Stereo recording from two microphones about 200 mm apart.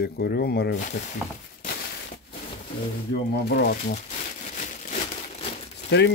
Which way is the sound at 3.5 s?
55° left (ahead or behind).